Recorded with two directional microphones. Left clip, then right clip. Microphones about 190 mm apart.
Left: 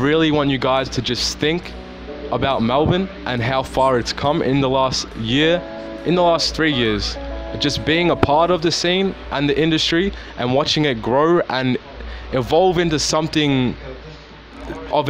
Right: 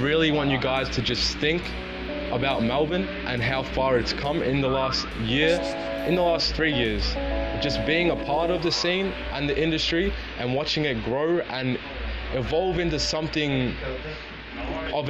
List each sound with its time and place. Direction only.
0.0 s speech: 40° left (ahead or behind)
14.9 s speech: 45° left (ahead or behind)